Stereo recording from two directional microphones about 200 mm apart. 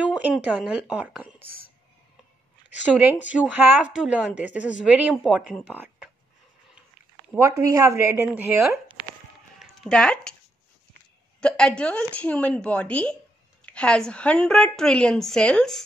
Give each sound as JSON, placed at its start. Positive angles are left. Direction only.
{"t": 0.0, "sound": "a sound", "side_deg": -5}
{"t": 0.5, "sound": "a woman's voice", "side_deg": -5}
{"t": 2.9, "sound": "a woman's voice", "side_deg": -10}
{"t": 7.3, "sound": "a woman's voice", "side_deg": -15}
{"t": 9.6, "sound": "a sound", "side_deg": 5}
{"t": 11.4, "sound": "a woman's voice", "side_deg": 5}